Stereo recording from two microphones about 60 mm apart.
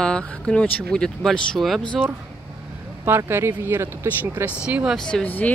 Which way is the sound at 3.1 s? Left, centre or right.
Right.